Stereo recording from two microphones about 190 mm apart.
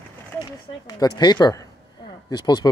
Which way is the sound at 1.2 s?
20° left (ahead or behind).